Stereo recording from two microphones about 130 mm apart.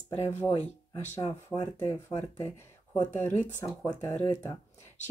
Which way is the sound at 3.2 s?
15° left (ahead or behind).